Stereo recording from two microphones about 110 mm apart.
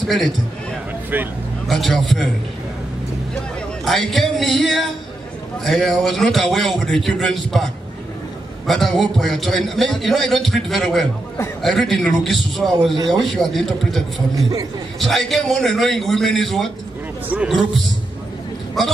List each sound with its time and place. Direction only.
0.0 s a man's voice: centre (ahead or behind)
1.1 s a man's voice: 15° right (ahead or behind)
1.7 s a man's voice: centre (ahead or behind)
3.8 s a man's voice: centre (ahead or behind)
8.6 s a man's voice: centre (ahead or behind)
12.9 s a man's voice: 35° right (ahead or behind)
13.2 s a man's voice: centre (ahead or behind)